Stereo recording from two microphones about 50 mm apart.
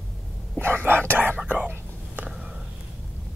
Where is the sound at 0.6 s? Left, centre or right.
Right.